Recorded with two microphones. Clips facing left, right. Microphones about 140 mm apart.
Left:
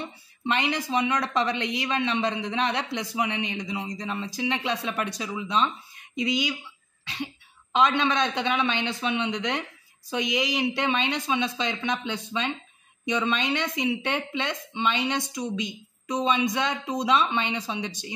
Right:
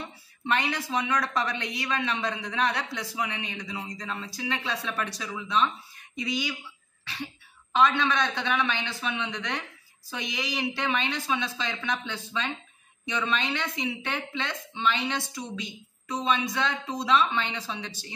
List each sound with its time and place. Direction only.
0.0 s speech: 20° left (ahead or behind)
7.7 s speech: 20° left (ahead or behind)